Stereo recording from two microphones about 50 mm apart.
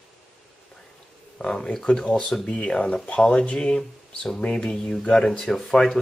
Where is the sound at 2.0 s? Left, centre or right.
Left.